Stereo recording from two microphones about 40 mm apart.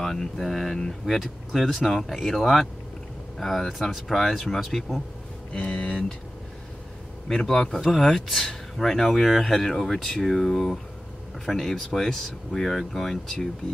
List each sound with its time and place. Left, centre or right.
0.0 s speech: centre
5.5 s speech: left
7.2 s speech: centre